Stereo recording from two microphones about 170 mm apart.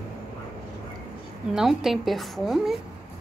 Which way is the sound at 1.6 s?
Centre (ahead or behind).